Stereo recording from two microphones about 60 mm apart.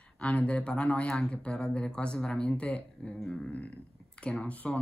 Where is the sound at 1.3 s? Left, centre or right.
Centre.